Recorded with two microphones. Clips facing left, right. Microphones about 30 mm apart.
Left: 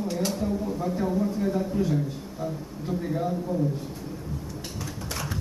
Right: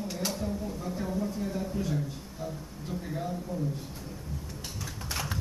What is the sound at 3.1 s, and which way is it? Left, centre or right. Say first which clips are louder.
Speech: left 7 dB; centre.